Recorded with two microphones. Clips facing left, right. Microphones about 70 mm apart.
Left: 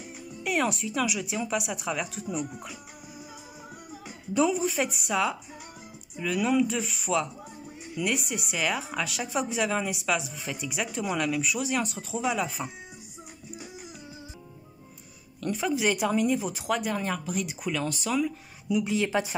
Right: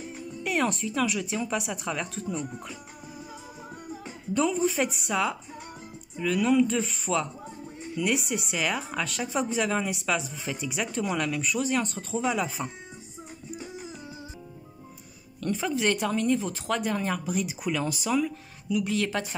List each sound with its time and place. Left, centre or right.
0.4 s speech: centre
4.0 s speech: centre
15.4 s speech: centre
18.7 s speech: centre